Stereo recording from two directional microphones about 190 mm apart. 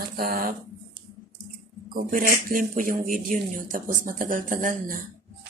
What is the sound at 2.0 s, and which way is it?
Speech, 45° right (ahead or behind).